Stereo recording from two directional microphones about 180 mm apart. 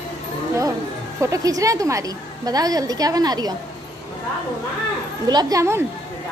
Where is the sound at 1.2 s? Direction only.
20° right (ahead or behind).